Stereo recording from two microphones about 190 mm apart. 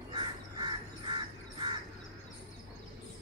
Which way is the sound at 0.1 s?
25° right (ahead or behind).